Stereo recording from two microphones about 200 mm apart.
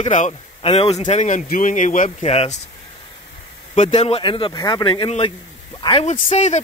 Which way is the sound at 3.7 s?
35° left (ahead or behind).